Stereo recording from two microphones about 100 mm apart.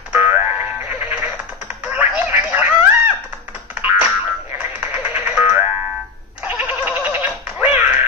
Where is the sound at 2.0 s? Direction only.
15° right (ahead or behind).